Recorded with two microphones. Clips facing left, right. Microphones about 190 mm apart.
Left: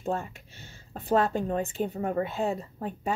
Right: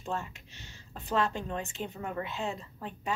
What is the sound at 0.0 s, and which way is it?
Speech, 50° left (ahead or behind).